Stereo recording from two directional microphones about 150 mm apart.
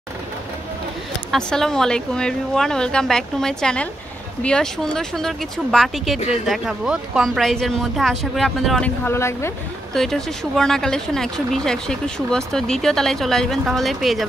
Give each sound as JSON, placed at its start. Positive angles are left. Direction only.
{"t": 1.3, "sound": "speech", "side_deg": 5}
{"t": 9.0, "sound": "speech", "side_deg": 15}
{"t": 9.9, "sound": "speech", "side_deg": 0}